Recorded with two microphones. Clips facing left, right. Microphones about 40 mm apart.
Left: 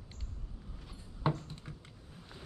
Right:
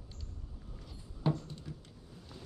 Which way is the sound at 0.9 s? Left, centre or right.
Left.